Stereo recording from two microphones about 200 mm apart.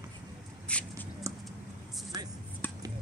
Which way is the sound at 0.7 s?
5° left (ahead or behind).